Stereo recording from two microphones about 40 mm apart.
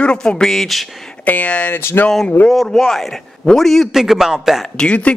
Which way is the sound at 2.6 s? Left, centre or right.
Centre.